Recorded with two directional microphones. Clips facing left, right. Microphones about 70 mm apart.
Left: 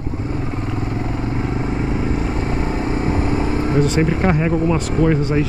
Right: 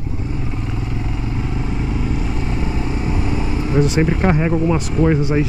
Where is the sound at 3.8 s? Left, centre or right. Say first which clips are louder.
Right 2 dB; centre.